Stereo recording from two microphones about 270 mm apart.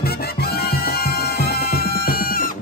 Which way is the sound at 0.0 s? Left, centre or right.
Left.